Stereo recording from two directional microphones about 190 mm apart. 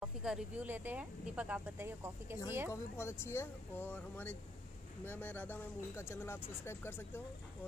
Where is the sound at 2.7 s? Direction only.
15° left (ahead or behind).